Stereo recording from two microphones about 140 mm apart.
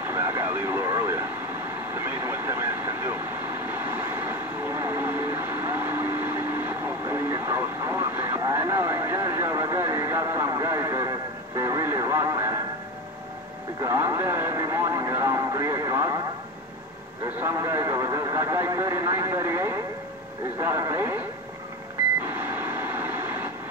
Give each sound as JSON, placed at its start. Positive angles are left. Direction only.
{"t": 0.1, "sound": "vehicle", "side_deg": -20}
{"t": 13.8, "sound": "speech", "side_deg": -20}
{"t": 17.4, "sound": "speech", "side_deg": -20}
{"t": 22.2, "sound": "a sound", "side_deg": -15}